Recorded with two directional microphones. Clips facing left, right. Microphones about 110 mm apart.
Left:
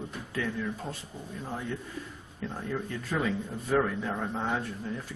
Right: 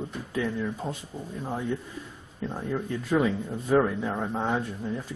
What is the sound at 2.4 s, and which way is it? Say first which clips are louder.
Speech: right 4 dB; 15° right (ahead or behind).